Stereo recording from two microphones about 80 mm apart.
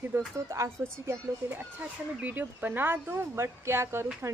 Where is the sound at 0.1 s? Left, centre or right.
Right.